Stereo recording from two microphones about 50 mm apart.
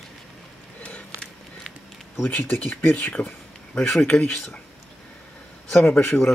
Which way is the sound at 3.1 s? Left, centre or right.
Left.